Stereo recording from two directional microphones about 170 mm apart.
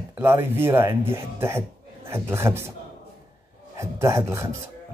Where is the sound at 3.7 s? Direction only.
15° right (ahead or behind).